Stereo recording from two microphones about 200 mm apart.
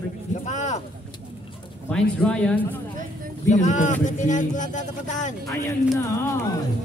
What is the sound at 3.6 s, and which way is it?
Speech, 40° left (ahead or behind).